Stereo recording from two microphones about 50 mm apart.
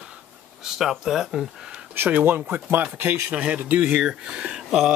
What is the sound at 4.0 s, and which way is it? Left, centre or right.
Speech, centre.